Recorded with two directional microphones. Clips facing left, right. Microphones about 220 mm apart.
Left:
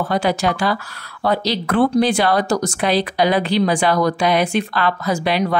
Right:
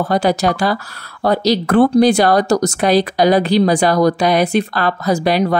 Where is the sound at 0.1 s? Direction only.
40° right (ahead or behind).